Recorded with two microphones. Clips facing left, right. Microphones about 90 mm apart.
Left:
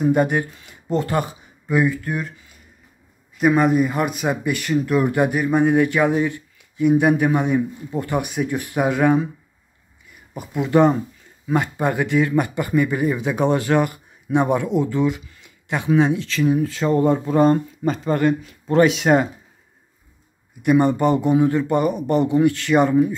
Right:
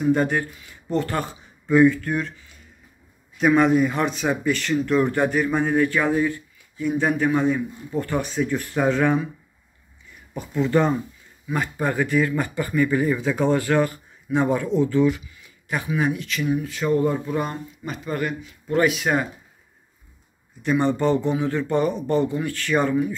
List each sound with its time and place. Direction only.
0.1 s a man's voice: 15° left (ahead or behind)
3.3 s a man's voice: 5° left (ahead or behind)
10.3 s a man's voice: 15° left (ahead or behind)
20.6 s speech: 15° left (ahead or behind)